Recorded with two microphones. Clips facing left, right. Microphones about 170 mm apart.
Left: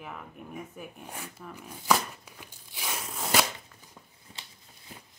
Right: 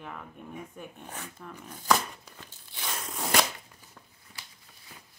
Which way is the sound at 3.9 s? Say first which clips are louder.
Left 2 dB; 25° left (ahead or behind).